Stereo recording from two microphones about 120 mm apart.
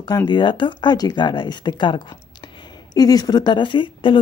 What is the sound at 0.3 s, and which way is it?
A woman's voice, 40° left (ahead or behind).